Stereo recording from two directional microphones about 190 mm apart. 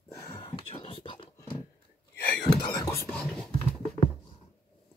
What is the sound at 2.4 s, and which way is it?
Whispering, 20° left (ahead or behind).